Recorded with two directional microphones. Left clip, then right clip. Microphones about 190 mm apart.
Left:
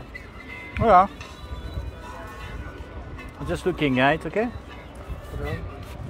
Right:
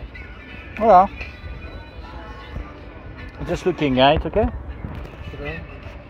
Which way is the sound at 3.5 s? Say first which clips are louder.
Right 3 dB; 20° right (ahead or behind).